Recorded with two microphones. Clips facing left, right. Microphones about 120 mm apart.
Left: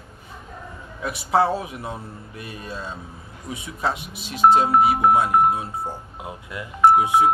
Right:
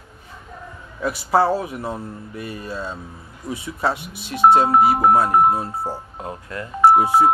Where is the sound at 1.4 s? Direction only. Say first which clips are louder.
Right 2 dB; 30° right (ahead or behind).